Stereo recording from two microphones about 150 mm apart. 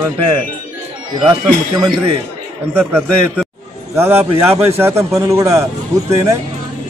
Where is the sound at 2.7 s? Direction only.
15° right (ahead or behind).